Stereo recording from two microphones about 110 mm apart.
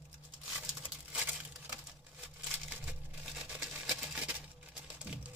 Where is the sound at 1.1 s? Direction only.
15° right (ahead or behind).